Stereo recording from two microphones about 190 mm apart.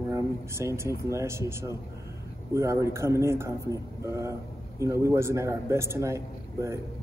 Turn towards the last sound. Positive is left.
turn(degrees=-15)  # may be behind; listen again after turning